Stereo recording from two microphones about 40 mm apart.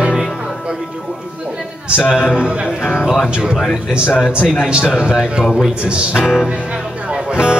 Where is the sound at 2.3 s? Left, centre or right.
Right.